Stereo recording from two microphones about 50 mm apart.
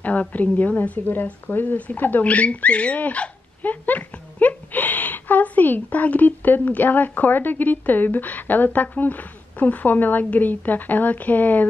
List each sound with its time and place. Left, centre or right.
0.0 s a woman's voice: left
1.5 s a woman's voice: left